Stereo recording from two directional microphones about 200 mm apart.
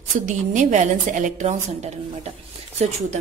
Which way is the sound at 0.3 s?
40° right (ahead or behind).